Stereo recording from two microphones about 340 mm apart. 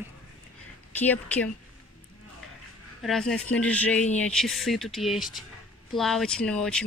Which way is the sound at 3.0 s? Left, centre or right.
Centre.